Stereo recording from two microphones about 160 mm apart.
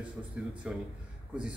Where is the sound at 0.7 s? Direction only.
5° right (ahead or behind).